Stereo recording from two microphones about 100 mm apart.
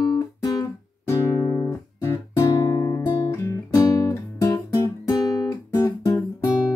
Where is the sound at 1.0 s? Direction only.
30° left (ahead or behind).